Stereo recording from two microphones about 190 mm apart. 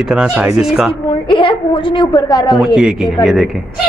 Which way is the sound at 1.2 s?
25° left (ahead or behind).